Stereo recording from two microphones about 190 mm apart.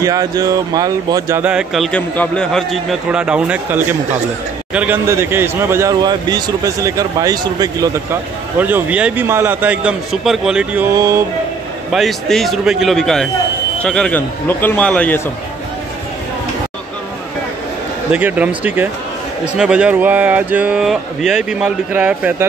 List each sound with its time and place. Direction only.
0.0 s speech: 20° right (ahead or behind)
1.4 s a man's voice: 5° right (ahead or behind)
11.9 s speech: centre (ahead or behind)
18.1 s a man's voice: 10° right (ahead or behind)